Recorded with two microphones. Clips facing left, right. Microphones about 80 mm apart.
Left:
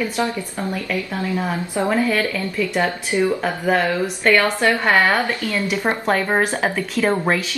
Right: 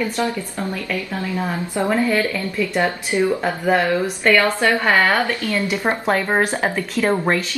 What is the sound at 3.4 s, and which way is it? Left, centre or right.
Speech, centre.